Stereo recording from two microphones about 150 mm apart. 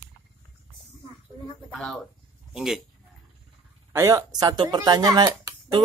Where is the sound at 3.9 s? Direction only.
20° right (ahead or behind).